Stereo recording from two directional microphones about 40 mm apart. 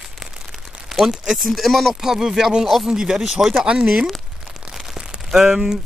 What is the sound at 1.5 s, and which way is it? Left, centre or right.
Speech, centre.